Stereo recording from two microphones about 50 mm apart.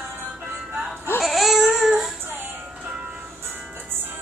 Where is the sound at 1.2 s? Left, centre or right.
Centre.